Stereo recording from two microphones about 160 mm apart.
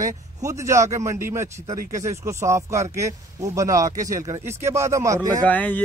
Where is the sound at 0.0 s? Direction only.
20° right (ahead or behind).